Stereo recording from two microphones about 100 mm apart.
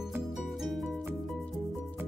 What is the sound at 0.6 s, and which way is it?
Music, centre (ahead or behind).